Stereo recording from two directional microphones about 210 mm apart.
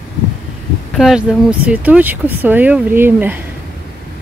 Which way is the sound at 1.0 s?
Centre (ahead or behind).